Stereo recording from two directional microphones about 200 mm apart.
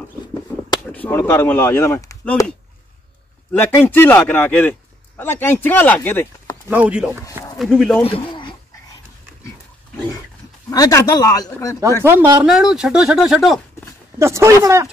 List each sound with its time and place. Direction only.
0.9 s speech: 10° left (ahead or behind)
3.5 s a man's voice: 10° left (ahead or behind)
6.7 s speech: 5° right (ahead or behind)
8.0 s dog: 25° left (ahead or behind)
10.7 s a man's voice: 15° left (ahead or behind)
12.0 s speech: 10° right (ahead or behind)
12.4 s speech: centre (ahead or behind)
14.1 s speech: 15° right (ahead or behind)